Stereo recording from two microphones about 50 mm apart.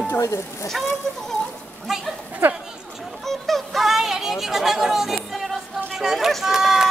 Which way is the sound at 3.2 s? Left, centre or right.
Centre.